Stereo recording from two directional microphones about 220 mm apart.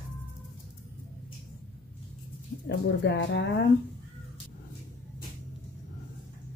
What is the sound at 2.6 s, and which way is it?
Speech, 55° left (ahead or behind).